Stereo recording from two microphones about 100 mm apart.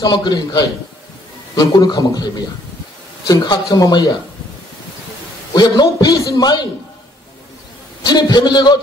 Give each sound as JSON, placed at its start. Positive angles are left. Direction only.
{"t": 0.0, "sound": "a man's voice", "side_deg": 45}
{"t": 5.5, "sound": "a man's voice", "side_deg": 40}
{"t": 8.1, "sound": "a man's voice", "side_deg": 45}